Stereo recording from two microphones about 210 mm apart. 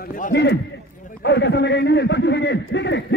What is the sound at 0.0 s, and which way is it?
A man's voice, 45° left (ahead or behind).